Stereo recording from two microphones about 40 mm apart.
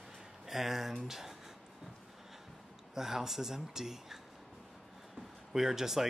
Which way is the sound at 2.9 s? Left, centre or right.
Centre.